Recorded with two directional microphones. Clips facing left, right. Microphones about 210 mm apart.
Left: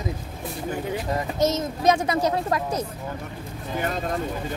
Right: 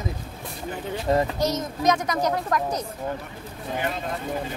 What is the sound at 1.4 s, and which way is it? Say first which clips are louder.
A child's voice: left 2 dB; 25° left (ahead or behind).